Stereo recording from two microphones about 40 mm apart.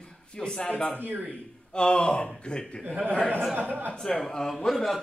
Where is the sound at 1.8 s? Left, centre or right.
Left.